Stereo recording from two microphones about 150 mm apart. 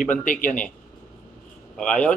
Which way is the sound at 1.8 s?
5° left (ahead or behind).